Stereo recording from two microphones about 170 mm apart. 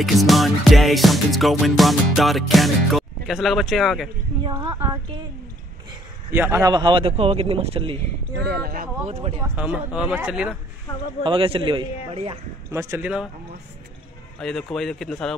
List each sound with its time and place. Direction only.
0.0 s music: centre (ahead or behind)
4.5 s a woman's voice: 25° right (ahead or behind)
6.3 s speech: 15° right (ahead or behind); by 8.0 s 35° right (ahead or behind)
8.5 s speech: 65° right (ahead or behind)
9.1 s speech: 35° right (ahead or behind)
9.4 s a woman's voice: 10° right (ahead or behind)
11.2 s speech: 30° right (ahead or behind)
12.7 s a woman's voice: 15° right (ahead or behind)
14.4 s music: centre (ahead or behind)